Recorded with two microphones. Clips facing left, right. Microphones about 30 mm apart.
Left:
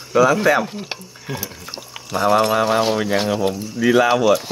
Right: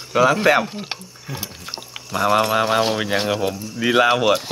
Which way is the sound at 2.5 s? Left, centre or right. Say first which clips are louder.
Left 1 dB; centre.